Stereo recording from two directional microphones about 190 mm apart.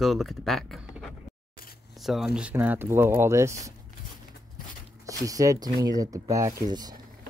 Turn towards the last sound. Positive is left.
turn(degrees=-20)  # may be behind; listen again after turning